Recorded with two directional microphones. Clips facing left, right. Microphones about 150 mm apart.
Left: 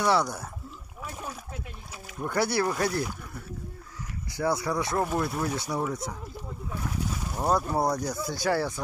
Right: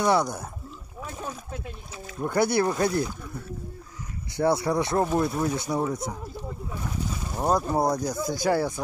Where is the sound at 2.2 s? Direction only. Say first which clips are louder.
Right 3 dB; 20° right (ahead or behind).